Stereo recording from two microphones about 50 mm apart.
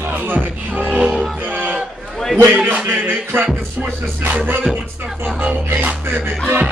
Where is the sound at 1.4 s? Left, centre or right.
Right.